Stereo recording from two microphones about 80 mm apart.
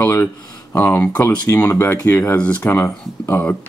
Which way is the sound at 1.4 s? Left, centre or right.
Left.